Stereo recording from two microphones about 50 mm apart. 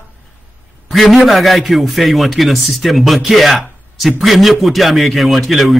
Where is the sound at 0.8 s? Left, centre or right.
Centre.